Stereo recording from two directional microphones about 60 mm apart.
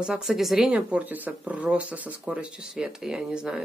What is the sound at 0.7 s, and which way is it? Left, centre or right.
Speech, centre.